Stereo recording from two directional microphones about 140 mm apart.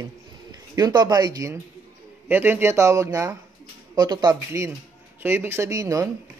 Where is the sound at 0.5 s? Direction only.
30° right (ahead or behind).